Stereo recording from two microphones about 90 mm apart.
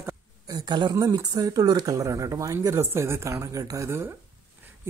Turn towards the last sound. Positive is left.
turn(degrees=-30)  # may be behind; listen again after turning